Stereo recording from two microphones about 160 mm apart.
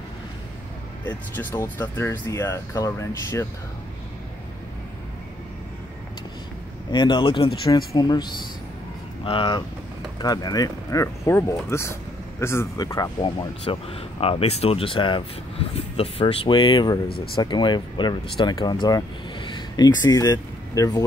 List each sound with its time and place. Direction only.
1.0 s speech: 10° left (ahead or behind)
6.9 s speech: 30° left (ahead or behind)